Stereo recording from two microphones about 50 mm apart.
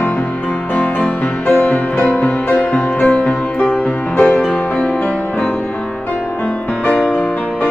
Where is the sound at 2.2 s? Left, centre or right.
Centre.